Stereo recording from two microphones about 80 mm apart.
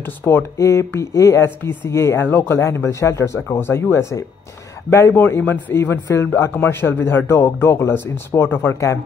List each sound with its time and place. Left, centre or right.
0.0 s speech: left
0.6 s speech: left